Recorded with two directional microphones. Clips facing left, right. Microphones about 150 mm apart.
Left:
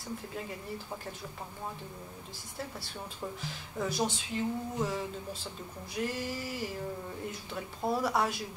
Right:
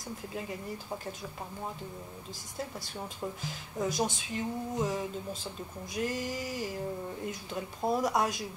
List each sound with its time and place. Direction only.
3.7 s speech: 15° right (ahead or behind)